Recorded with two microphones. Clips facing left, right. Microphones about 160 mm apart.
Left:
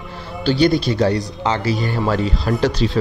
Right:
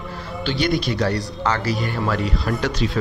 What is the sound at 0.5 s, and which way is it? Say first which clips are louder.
Speech: left 7 dB; 40° left (ahead or behind).